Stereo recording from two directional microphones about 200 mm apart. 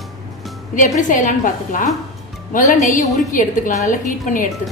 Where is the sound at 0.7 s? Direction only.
40° left (ahead or behind).